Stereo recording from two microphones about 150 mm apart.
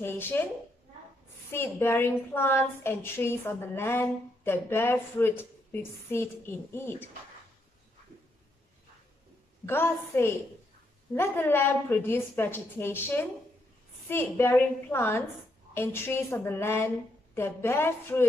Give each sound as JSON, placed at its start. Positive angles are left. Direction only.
{"t": 0.0, "sound": "a woman's voice", "side_deg": 15}
{"t": 1.5, "sound": "a woman's voice", "side_deg": 15}
{"t": 9.7, "sound": "a woman's voice", "side_deg": 15}